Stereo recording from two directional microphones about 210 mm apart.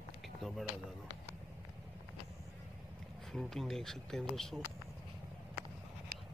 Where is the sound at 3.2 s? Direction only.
Centre (ahead or behind).